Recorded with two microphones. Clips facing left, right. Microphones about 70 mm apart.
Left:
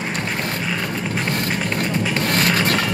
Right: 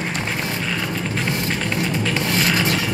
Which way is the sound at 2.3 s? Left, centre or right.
Left.